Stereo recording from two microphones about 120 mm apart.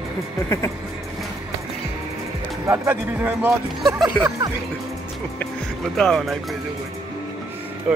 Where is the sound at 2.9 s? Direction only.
15° right (ahead or behind).